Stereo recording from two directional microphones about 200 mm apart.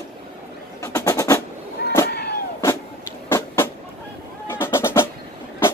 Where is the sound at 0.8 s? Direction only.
15° left (ahead or behind).